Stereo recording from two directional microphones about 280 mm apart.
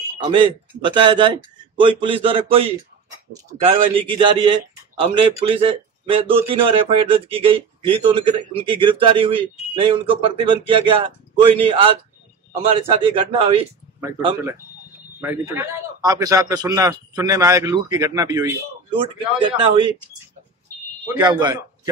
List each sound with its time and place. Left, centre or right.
0.2 s a man's voice: centre
21.2 s a man's voice: centre